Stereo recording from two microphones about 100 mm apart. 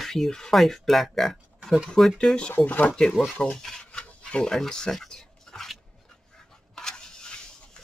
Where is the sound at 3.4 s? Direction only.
5° left (ahead or behind).